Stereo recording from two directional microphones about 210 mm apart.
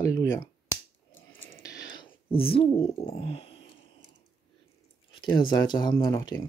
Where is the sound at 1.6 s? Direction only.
20° left (ahead or behind).